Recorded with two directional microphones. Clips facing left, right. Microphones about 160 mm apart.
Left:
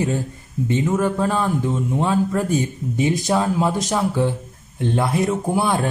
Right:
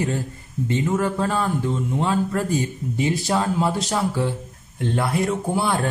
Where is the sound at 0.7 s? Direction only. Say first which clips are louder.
Left 2 dB; 15° left (ahead or behind).